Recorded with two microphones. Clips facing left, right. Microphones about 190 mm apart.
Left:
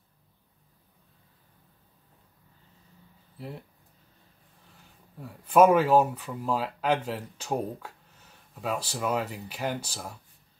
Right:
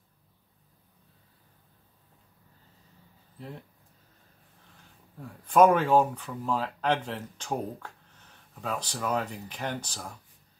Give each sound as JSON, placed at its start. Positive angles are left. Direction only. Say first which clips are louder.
{"t": 3.3, "sound": "speech", "louder": "left 2 dB", "side_deg": 5}
{"t": 5.2, "sound": "speech", "louder": "left 1 dB", "side_deg": 5}